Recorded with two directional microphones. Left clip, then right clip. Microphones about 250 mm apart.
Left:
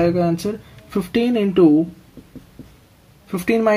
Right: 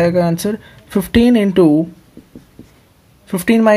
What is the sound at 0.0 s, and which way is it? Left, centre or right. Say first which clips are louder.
Speech: right 4 dB; right.